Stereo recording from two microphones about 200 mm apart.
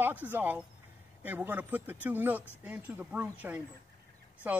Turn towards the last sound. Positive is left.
turn(degrees=-10)  # may be behind; listen again after turning